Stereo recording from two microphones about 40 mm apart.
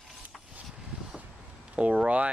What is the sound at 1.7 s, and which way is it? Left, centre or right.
Speech, right.